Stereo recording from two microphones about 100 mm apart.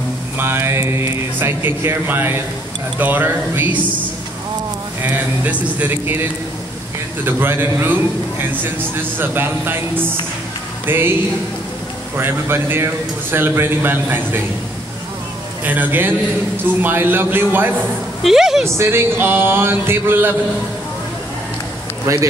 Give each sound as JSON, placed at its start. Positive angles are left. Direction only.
{"t": 0.4, "sound": "a man's voice", "side_deg": -25}
{"t": 5.0, "sound": "a man's voice", "side_deg": -15}
{"t": 7.2, "sound": "a man's voice", "side_deg": -20}
{"t": 12.2, "sound": "a man's voice", "side_deg": -20}
{"t": 15.6, "sound": "a man's voice", "side_deg": -20}
{"t": 18.2, "sound": "a woman's voice", "side_deg": -5}
{"t": 18.8, "sound": "a man's voice", "side_deg": -25}
{"t": 22.0, "sound": "speech", "side_deg": -30}